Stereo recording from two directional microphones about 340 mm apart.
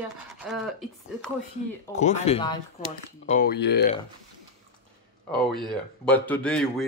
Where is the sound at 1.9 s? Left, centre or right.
Centre.